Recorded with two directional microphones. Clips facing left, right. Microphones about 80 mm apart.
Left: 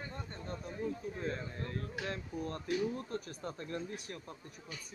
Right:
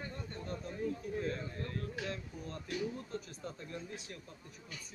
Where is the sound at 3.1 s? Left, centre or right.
Left.